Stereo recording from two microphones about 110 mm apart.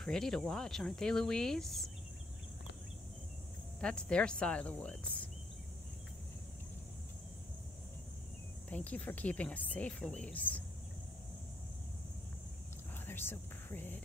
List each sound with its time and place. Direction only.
0.0 s speech: 5° left (ahead or behind)
3.8 s speech: 10° left (ahead or behind)
8.6 s speech: 15° left (ahead or behind)
13.0 s a sound: 20° left (ahead or behind)